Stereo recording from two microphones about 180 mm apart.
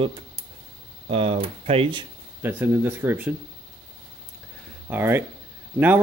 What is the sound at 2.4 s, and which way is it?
Speech, 10° right (ahead or behind).